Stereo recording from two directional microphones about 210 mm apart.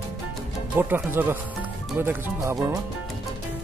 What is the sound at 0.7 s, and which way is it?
Speech, 10° right (ahead or behind).